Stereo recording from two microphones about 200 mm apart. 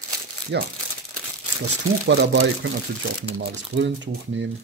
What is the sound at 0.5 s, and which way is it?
Speech, 60° right (ahead or behind).